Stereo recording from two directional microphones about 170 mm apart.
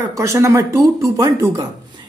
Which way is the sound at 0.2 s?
15° right (ahead or behind).